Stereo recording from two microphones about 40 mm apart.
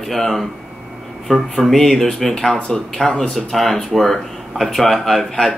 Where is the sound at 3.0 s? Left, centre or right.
Left.